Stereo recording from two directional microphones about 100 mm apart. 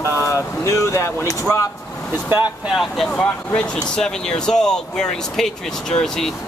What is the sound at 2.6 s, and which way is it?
Speech, centre (ahead or behind).